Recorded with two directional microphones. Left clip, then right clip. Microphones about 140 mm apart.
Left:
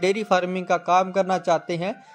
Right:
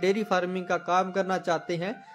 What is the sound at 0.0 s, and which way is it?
Speech, 35° left (ahead or behind).